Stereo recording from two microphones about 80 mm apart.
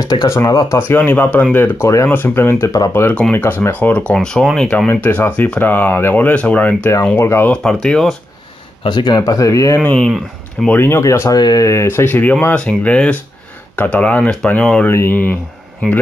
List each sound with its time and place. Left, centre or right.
0.0 s speech: left
0.7 s speech: left
4.1 s speech: centre
4.8 s speech: left
7.2 s speech: left
7.5 s speech: centre
8.8 s speech: left
9.2 s speech: left
9.9 s speech: centre
10.7 s speech: left
11.3 s speech: left
11.6 s speech: left; by 14.9 s centre
14.9 s speech: left